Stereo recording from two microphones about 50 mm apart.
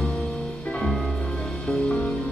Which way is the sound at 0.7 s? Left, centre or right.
Centre.